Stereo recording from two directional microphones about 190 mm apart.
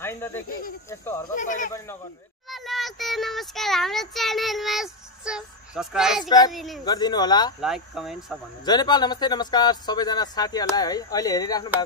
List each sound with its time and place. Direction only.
0.0 s speech: 10° left (ahead or behind)
0.5 s speech: 50° left (ahead or behind)
0.8 s speech: 15° left (ahead or behind)
1.3 s speech: 40° left (ahead or behind)
2.5 s speech: centre (ahead or behind)
6.8 s speech: 20° left (ahead or behind)
7.6 s speech: centre (ahead or behind)
8.6 s speech: 20° left (ahead or behind)